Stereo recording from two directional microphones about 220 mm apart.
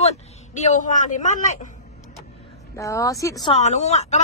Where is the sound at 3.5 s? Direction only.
30° left (ahead or behind).